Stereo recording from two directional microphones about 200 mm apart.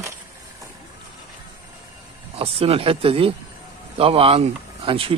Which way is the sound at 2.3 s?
30° right (ahead or behind).